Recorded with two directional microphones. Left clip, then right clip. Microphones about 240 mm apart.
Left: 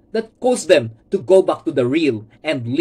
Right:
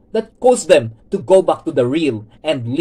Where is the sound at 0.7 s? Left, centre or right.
Centre.